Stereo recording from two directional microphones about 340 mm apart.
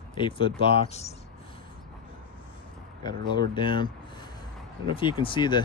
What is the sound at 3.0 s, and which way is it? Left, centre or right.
Speech, centre.